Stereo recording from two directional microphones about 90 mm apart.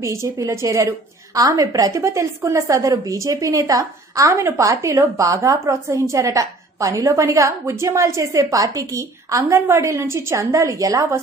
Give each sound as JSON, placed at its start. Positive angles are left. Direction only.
{"t": 0.0, "sound": "a woman's voice", "side_deg": -35}